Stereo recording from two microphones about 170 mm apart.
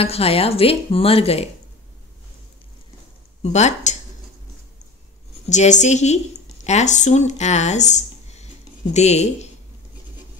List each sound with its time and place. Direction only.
0.0 s a woman's voice: 35° left (ahead or behind)
3.4 s speech: 40° left (ahead or behind)
5.5 s a woman's voice: 45° left (ahead or behind)